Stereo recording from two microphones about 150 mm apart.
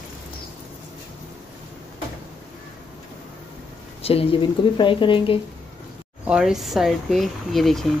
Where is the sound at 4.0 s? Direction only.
40° left (ahead or behind).